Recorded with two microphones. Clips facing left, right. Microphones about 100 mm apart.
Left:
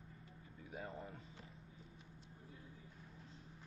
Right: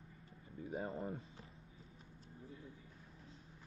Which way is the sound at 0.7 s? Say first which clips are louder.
Right 7 dB; 40° right (ahead or behind).